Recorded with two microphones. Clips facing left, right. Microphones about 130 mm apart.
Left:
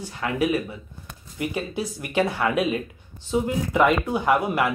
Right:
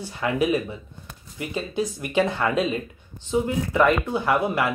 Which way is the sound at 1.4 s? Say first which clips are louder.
Right 1 dB; 15° left (ahead or behind).